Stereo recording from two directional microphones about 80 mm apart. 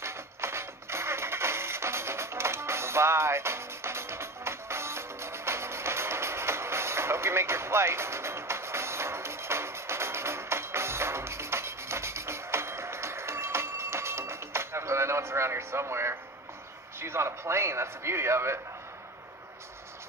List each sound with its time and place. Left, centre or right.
0.0 s music: right
17.0 s a man's voice: right